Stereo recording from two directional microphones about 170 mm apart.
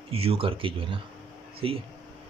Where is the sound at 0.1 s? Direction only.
35° right (ahead or behind).